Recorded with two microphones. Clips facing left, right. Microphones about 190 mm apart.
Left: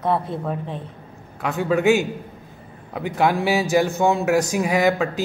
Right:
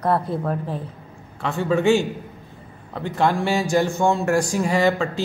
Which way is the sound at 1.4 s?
10° left (ahead or behind).